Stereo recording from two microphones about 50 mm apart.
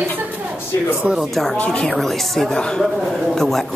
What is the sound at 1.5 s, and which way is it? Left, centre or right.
Speech, left.